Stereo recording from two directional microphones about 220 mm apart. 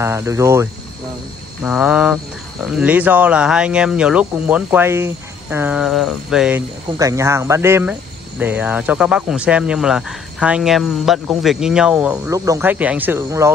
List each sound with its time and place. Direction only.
0.0 s speech: 10° right (ahead or behind)
7.0 s speech: 15° right (ahead or behind)